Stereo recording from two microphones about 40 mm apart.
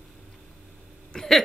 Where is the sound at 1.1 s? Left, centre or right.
Centre.